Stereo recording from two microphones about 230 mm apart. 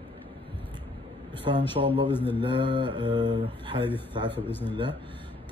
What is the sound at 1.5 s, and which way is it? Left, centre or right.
A man's voice, right.